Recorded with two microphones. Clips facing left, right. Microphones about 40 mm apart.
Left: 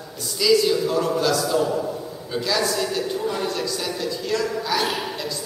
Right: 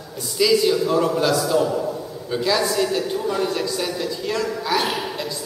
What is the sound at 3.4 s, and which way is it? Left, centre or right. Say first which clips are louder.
A man's voice: right 2 dB; centre.